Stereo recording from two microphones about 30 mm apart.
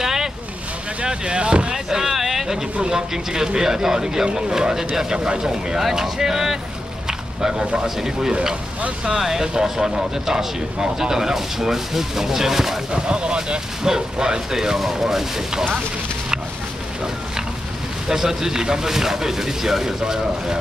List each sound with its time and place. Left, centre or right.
0.0 s vehicle: centre
1.0 s speech: right
1.7 s boat: centre
3.3 s speech: centre
5.8 s speech: centre
7.1 s a sound: right
8.0 s speech: centre
12.9 s speech: right
14.5 s speech: centre
18.0 s speech: centre